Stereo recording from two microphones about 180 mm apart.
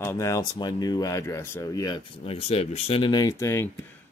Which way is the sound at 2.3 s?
35° left (ahead or behind).